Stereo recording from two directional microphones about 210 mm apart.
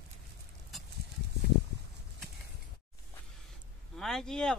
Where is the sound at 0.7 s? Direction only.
Centre (ahead or behind).